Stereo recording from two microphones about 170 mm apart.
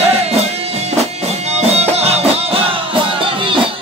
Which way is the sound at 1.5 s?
40° right (ahead or behind).